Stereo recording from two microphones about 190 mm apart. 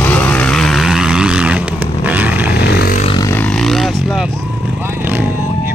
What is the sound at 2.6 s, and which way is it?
Vehicle, 60° left (ahead or behind).